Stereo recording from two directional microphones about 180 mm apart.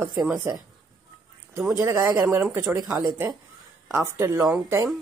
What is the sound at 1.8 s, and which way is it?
A woman's voice, 20° right (ahead or behind).